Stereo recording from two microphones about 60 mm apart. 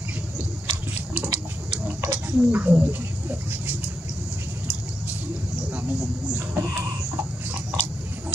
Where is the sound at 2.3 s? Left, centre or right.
Right.